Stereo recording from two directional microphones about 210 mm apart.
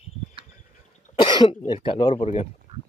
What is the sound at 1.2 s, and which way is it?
Cough, 20° left (ahead or behind).